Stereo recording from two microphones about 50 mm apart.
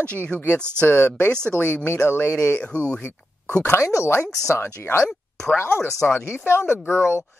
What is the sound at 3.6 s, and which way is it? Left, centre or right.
Speech, left.